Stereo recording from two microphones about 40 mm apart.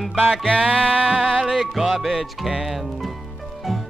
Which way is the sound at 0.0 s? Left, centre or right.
Centre.